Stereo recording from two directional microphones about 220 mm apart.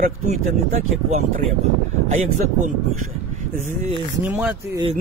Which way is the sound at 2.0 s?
30° right (ahead or behind).